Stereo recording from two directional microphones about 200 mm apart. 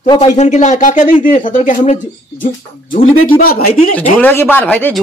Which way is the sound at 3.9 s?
10° left (ahead or behind).